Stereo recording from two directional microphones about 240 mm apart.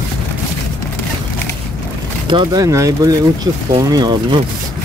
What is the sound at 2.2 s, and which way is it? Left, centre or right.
Speech, centre.